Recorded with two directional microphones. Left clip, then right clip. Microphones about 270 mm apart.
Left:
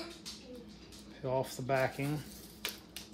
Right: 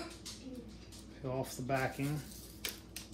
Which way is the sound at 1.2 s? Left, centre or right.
Left.